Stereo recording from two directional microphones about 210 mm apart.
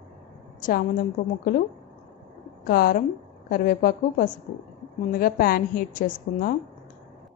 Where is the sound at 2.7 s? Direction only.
45° left (ahead or behind).